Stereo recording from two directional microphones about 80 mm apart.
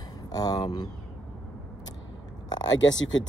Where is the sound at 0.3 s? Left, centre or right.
Left.